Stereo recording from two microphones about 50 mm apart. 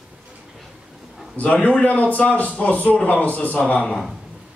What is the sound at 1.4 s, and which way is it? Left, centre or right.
A man's voice, left.